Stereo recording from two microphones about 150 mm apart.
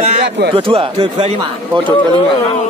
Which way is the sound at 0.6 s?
35° right (ahead or behind).